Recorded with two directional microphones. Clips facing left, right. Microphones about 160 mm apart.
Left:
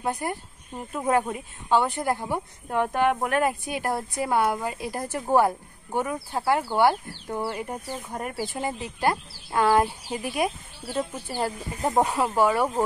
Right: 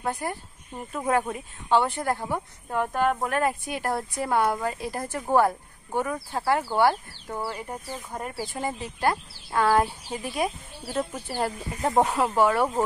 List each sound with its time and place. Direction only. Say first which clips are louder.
0.0 s speech: left 1 dB; 15° left (ahead or behind)